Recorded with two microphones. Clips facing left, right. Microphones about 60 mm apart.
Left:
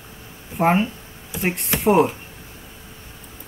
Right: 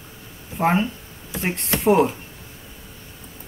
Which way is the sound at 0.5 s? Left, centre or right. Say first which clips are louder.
Left 2 dB; centre.